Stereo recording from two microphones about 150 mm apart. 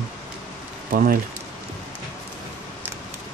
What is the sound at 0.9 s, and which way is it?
Speech, 70° right (ahead or behind).